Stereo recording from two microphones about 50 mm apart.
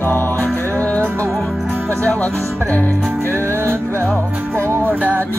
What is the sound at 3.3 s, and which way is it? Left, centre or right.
Music, right.